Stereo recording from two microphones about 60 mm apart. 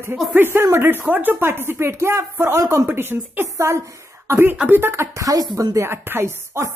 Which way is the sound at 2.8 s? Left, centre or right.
Right.